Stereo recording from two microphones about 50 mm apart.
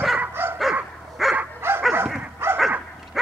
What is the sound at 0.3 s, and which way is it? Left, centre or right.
Dog, right.